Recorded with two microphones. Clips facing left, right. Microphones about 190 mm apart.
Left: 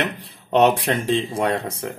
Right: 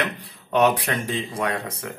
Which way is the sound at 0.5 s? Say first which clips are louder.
Left 3 dB; 25° left (ahead or behind).